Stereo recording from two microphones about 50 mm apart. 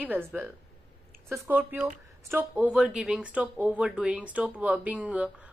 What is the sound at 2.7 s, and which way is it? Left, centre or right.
A woman's voice, centre.